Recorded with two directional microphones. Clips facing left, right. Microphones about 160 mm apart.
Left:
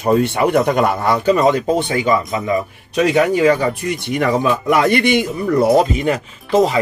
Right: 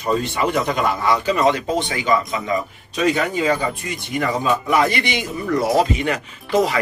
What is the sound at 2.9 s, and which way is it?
Speech, 70° left (ahead or behind).